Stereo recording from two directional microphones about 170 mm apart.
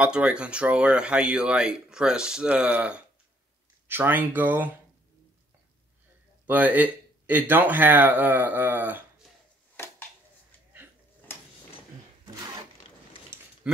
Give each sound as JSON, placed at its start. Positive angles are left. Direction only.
{"t": 0.0, "sound": "speech", "side_deg": -5}
{"t": 6.4, "sound": "speech", "side_deg": -10}